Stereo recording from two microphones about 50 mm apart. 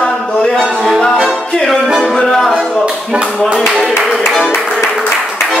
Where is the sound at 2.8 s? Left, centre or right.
Centre.